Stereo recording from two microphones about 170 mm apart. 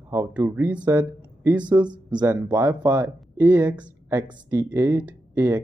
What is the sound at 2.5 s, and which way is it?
Speech, 15° right (ahead or behind).